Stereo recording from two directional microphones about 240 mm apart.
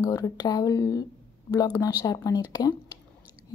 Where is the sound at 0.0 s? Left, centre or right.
Centre.